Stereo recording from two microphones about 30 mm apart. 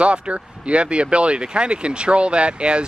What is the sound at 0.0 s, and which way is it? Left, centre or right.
Speech, right.